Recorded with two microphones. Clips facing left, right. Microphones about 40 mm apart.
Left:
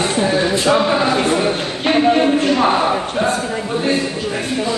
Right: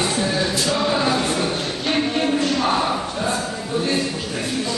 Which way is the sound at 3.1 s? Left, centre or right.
Left.